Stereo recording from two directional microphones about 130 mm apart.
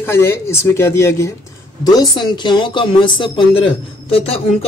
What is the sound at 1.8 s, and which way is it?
Speech, 30° left (ahead or behind).